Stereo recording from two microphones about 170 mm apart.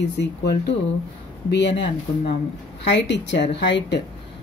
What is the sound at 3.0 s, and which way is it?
Speech, 90° left.